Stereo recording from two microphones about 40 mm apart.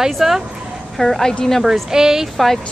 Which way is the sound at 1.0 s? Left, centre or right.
Centre.